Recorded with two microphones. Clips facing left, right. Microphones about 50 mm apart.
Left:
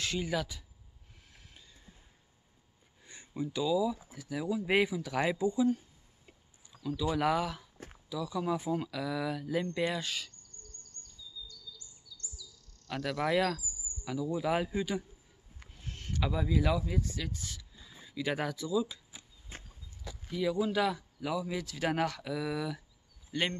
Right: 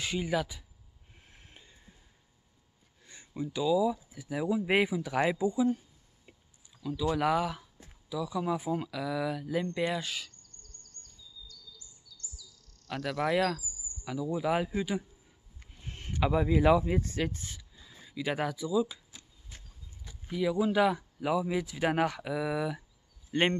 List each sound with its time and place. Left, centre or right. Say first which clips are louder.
0.0 s speech: right 2 dB; centre
1.3 s a sound: right 2 dB; right
3.0 s speech: even; centre
6.3 s a sound: right 2 dB; centre
6.8 s speech: right 1 dB; centre
12.8 s speech: right 1 dB; centre; by 17.6 s right
17.7 s speech: right 1 dB; centre
19.5 s a sound: left 5 dB; left
20.2 s speech: right 2 dB; centre
23.3 s speech: right 6 dB; right